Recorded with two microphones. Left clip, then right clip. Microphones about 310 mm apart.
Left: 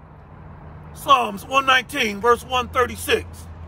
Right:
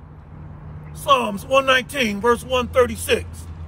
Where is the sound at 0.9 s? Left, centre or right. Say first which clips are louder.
Left 1 dB; centre.